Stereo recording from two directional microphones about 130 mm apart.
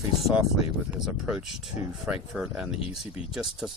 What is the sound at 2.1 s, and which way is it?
Speech, 5° right (ahead or behind).